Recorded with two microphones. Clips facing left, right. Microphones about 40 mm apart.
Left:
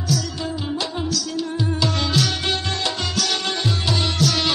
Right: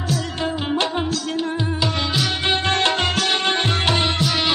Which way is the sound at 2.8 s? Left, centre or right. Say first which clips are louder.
Right 5 dB; right.